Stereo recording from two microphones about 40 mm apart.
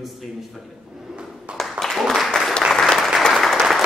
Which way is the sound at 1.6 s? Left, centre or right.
Centre.